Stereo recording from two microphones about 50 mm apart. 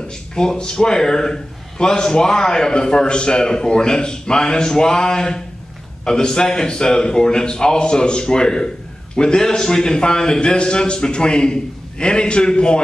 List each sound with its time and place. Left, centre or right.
0.3 s a man's voice: centre